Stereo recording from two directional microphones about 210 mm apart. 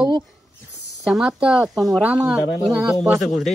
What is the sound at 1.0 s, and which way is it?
Speech, centre (ahead or behind).